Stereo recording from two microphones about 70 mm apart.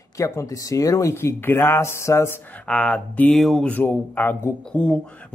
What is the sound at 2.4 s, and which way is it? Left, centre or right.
Speech, centre.